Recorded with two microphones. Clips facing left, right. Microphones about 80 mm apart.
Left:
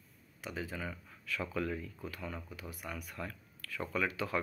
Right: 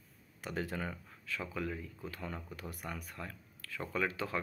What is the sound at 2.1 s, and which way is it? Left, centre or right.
Speech, right.